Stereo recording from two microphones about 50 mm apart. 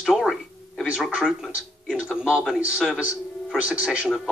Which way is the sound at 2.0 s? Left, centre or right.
Right.